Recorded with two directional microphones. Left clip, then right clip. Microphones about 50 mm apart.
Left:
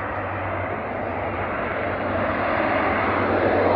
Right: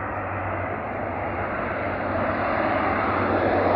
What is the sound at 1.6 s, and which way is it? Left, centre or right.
Vehicle, centre.